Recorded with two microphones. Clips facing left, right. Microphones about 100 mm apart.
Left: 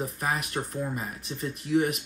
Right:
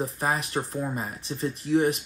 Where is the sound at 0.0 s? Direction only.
30° right (ahead or behind).